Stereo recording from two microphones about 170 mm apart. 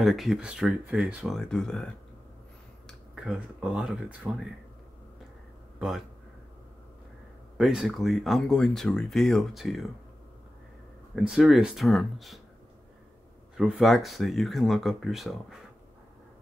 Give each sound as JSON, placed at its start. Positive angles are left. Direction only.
{"t": 0.0, "sound": "speech", "side_deg": 0}
{"t": 2.9, "sound": "speech", "side_deg": 0}
{"t": 5.8, "sound": "speech", "side_deg": 0}
{"t": 7.5, "sound": "speech", "side_deg": 0}
{"t": 11.2, "sound": "speech", "side_deg": -5}
{"t": 13.6, "sound": "speech", "side_deg": 0}